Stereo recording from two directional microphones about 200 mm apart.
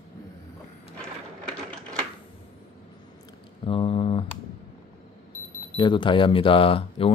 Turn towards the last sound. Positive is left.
turn(degrees=25)  # may be behind; listen again after turning